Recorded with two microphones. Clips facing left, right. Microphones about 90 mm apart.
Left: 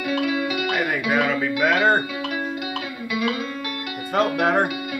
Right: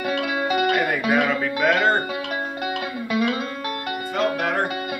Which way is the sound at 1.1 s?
Centre (ahead or behind).